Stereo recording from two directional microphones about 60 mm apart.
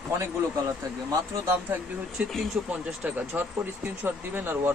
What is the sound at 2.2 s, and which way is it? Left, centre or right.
Speech, right.